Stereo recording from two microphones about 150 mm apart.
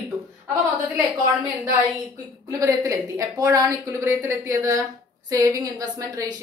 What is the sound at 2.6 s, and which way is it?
A woman's voice, 20° right (ahead or behind).